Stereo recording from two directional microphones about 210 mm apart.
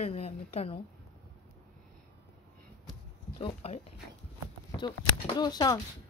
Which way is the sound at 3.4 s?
30° left (ahead or behind).